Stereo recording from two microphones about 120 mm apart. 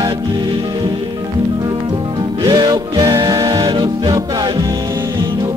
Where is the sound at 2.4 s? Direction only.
35° right (ahead or behind).